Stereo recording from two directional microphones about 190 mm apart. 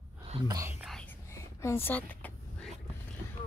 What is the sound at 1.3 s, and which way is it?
Vehicle, 15° left (ahead or behind).